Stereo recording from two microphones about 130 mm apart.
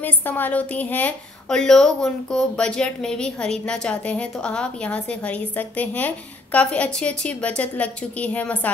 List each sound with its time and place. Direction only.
0.0 s a woman's voice: 15° left (ahead or behind)